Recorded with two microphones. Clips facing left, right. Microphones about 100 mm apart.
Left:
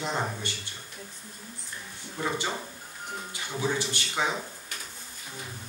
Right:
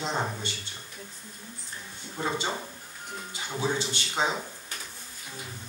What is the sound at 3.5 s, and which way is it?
Speech, 20° right (ahead or behind).